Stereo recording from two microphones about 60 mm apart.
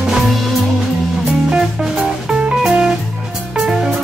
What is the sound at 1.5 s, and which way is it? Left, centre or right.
Music, centre.